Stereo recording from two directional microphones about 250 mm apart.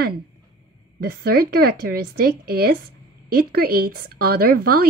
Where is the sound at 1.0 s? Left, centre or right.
Right.